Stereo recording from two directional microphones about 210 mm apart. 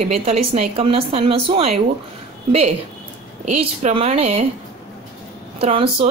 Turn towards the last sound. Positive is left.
turn(degrees=-25)  # may be behind; listen again after turning